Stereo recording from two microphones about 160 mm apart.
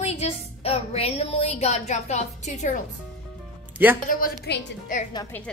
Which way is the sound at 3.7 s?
15° right (ahead or behind).